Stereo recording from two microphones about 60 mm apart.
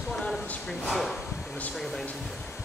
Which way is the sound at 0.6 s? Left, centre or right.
Centre.